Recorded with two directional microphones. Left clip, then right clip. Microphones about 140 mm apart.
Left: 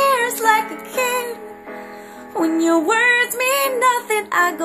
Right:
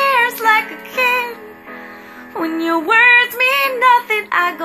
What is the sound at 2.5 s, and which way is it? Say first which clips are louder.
Female singing: right 4 dB; 40° left (ahead or behind).